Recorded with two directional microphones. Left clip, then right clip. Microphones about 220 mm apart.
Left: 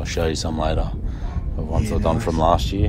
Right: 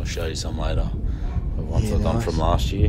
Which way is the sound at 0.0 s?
25° left (ahead or behind).